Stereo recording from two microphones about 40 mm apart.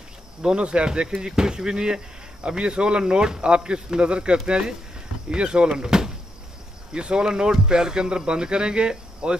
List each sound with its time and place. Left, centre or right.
0.4 s speech: right